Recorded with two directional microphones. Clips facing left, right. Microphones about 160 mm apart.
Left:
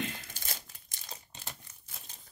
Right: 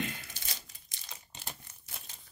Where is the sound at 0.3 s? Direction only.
45° left (ahead or behind).